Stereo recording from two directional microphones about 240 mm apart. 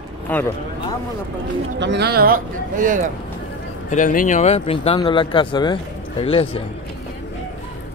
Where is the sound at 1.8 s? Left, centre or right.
Right.